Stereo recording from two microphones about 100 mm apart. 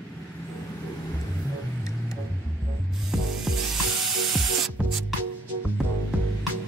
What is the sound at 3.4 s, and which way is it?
Music, centre (ahead or behind).